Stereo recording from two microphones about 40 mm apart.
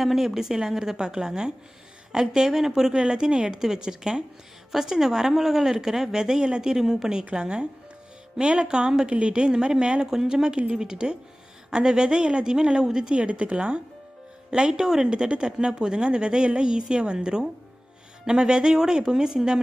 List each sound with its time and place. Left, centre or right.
0.0 s a woman's voice: centre; by 13.7 s right
14.5 s speech: centre